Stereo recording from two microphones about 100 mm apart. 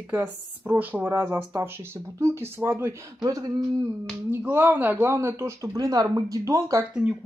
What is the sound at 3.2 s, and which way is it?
Speech, 35° right (ahead or behind).